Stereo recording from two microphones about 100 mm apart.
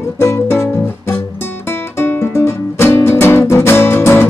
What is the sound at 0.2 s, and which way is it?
Music, 25° left (ahead or behind).